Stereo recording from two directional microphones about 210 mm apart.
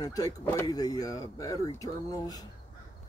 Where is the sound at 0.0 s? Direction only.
15° left (ahead or behind).